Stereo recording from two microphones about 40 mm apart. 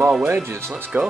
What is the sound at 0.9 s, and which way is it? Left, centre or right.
Speech, right.